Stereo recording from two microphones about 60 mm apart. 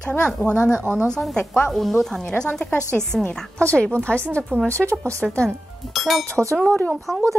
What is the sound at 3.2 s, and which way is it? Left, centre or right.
A woman's voice, centre.